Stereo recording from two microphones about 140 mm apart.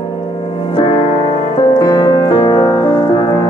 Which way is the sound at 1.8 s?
30° left (ahead or behind).